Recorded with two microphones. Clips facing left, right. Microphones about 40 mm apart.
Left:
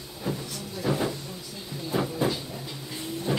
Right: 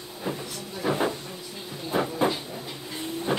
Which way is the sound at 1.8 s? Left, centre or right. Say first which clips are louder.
Right 2 dB; centre.